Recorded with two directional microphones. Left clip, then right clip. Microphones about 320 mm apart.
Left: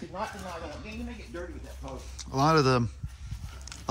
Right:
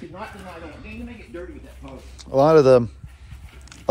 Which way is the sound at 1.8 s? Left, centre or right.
Centre.